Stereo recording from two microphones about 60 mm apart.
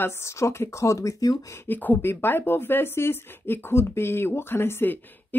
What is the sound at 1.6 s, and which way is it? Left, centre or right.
Speech, left.